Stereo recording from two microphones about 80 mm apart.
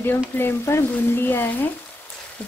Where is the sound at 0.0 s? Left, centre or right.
Left.